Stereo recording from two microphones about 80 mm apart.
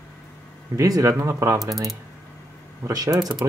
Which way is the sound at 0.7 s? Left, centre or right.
Right.